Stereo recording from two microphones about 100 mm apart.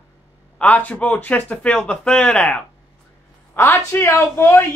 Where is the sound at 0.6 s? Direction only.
15° left (ahead or behind).